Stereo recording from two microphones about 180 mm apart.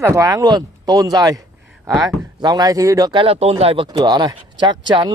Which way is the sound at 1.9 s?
Centre (ahead or behind).